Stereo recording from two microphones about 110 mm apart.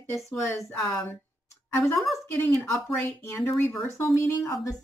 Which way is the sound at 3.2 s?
20° left (ahead or behind).